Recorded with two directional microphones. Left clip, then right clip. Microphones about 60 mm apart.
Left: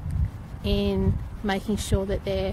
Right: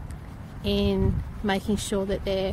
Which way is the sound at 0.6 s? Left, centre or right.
Centre.